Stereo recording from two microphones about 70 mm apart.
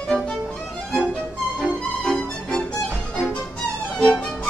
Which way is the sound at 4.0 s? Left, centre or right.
Centre.